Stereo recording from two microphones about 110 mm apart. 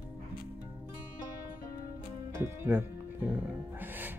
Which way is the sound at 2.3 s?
20° right (ahead or behind).